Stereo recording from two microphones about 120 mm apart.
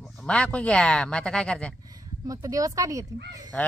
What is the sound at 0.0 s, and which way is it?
Speech, 5° left (ahead or behind).